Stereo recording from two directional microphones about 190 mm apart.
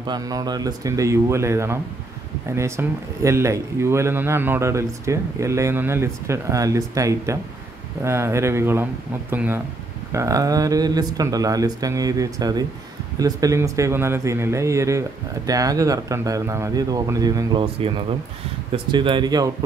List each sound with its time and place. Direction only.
0.0 s speech: 20° right (ahead or behind)
17.7 s speech: 30° right (ahead or behind)